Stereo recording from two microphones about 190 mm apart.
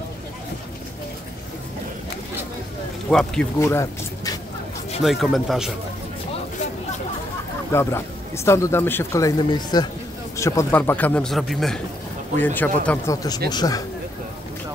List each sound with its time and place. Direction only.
3.1 s speech: centre (ahead or behind)
3.5 s speech: 15° left (ahead or behind)
5.0 s speech: centre (ahead or behind)
7.7 s a man's voice: 15° left (ahead or behind)